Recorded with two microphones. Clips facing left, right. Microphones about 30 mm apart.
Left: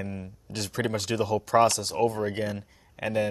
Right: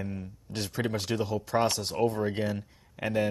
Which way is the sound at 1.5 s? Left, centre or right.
Left.